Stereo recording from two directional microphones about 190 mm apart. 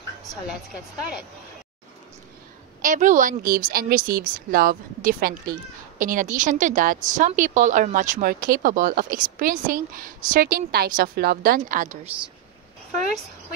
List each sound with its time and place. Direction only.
0.5 s a woman's voice: centre (ahead or behind)
2.8 s a woman's voice: 40° right (ahead or behind)